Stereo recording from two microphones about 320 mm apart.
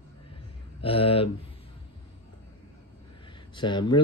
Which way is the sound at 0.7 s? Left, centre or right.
Centre.